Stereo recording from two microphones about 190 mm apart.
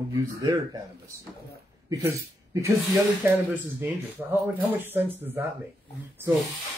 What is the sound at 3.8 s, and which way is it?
Speech, 10° right (ahead or behind).